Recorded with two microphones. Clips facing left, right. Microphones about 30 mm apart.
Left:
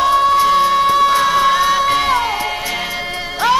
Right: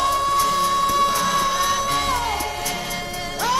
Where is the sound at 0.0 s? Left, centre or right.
Left.